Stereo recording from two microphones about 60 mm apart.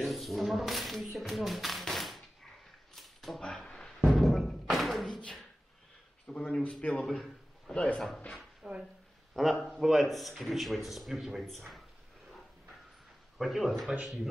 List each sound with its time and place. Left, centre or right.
0.0 s speech: centre
2.9 s a sound: centre
4.1 s music: centre
6.5 s speech: centre
7.1 s a sound: centre
7.7 s speech: centre
8.6 s speech: centre
9.3 s a man's voice: centre
13.4 s a man's voice: centre